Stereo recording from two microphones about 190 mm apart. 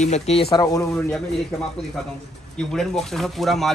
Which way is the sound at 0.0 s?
35° left (ahead or behind).